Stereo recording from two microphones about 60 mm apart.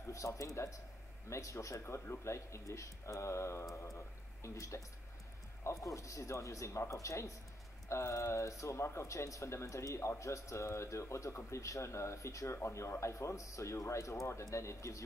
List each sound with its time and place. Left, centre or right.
0.0 s a man's voice: left